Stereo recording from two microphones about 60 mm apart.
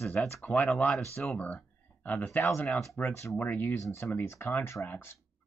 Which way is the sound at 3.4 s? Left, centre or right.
Left.